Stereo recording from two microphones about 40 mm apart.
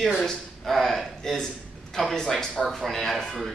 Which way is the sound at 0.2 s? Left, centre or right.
Centre.